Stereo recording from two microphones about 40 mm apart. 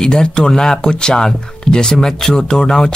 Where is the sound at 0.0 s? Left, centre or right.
Centre.